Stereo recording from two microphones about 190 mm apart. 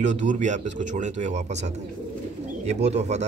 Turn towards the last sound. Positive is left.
turn(degrees=-35)  # may be behind; listen again after turning